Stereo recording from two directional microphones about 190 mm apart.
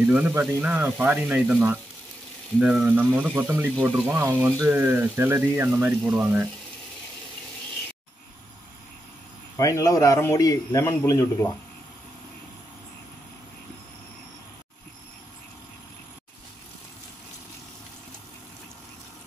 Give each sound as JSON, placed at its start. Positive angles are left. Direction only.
{"t": 0.0, "sound": "speech", "side_deg": -10}
{"t": 9.6, "sound": "a man's voice", "side_deg": 15}